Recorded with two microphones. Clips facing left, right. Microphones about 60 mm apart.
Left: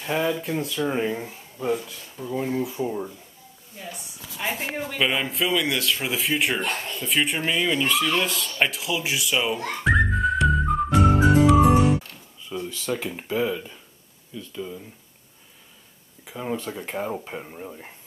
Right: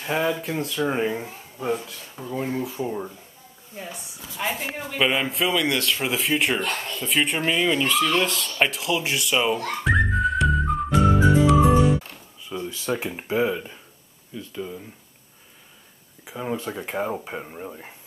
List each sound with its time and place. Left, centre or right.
0.0 s speech: centre
0.8 s speech: centre
3.7 s speech: right
4.4 s speech: centre
9.8 s music: centre
12.0 s music: centre
13.0 s speech: centre
16.3 s speech: centre